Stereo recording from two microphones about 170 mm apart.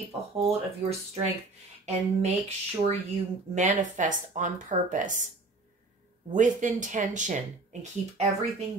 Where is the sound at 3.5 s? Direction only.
45° right (ahead or behind).